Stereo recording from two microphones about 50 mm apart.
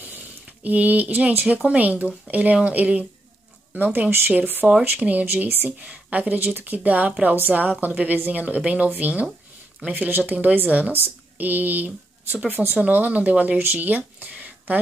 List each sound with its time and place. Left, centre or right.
0.0 s a sound: right
1.6 s speech: right
4.6 s speech: centre
5.2 s speech: right
5.7 s speech: right